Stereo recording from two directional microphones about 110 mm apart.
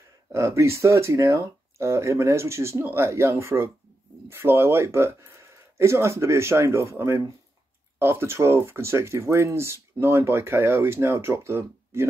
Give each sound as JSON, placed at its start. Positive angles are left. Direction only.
{"t": 0.3, "sound": "speech", "side_deg": -25}